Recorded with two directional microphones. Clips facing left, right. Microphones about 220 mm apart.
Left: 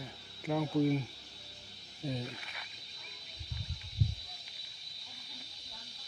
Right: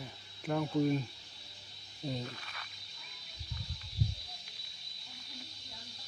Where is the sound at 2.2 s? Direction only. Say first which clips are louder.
Left 1 dB; 10° left (ahead or behind).